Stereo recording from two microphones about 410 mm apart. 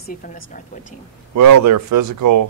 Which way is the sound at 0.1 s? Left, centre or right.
Centre.